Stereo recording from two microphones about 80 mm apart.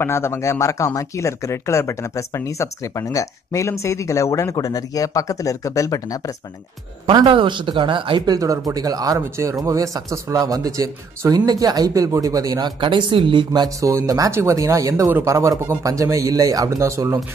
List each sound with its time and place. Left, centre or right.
0.0 s speech: left
7.2 s speech: right
8.3 s a man's voice: right
9.2 s a man's voice: right
12.8 s a man's voice: right